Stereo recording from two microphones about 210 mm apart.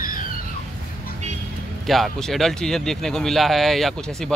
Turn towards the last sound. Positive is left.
turn(degrees=0)  # may be behind; listen again after turning